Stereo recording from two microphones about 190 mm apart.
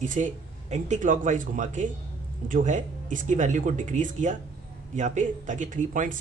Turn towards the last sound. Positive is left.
turn(degrees=-45)  # may be behind; listen again after turning